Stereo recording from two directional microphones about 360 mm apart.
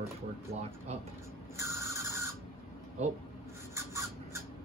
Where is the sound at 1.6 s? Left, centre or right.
Centre.